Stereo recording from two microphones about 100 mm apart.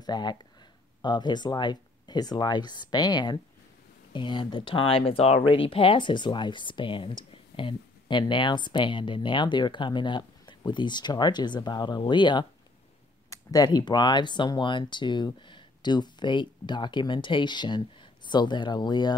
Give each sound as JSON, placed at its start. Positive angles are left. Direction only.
{"t": 0.0, "sound": "speech", "side_deg": 45}
{"t": 13.3, "sound": "a sound", "side_deg": 35}
{"t": 13.7, "sound": "speech", "side_deg": 50}